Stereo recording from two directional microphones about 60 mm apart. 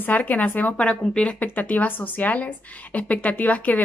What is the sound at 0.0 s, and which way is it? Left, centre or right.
Speech, left.